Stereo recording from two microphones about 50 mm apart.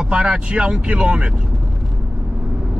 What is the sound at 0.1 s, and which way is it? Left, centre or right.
Speech, right.